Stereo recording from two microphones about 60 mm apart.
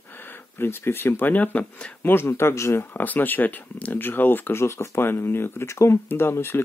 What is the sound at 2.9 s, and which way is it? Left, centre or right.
Speech, left.